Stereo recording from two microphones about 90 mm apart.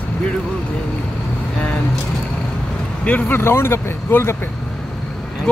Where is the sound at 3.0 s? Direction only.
20° left (ahead or behind).